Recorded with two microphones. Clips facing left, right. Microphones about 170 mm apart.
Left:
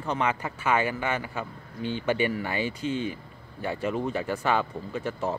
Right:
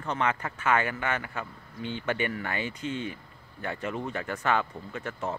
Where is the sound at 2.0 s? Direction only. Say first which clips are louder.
Left 4 dB; 30° left (ahead or behind).